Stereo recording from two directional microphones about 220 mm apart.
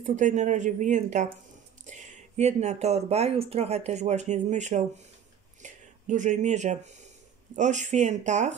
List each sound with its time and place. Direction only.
0.0 s speech: 35° right (ahead or behind)